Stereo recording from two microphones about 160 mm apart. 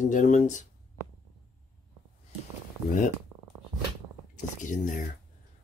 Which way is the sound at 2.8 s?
55° left (ahead or behind).